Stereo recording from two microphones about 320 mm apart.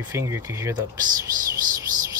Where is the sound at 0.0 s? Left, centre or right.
Centre.